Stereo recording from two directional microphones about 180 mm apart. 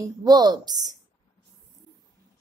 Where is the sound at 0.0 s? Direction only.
20° right (ahead or behind).